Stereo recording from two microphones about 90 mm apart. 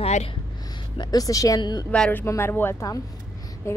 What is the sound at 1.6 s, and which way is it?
Speech, 50° left (ahead or behind).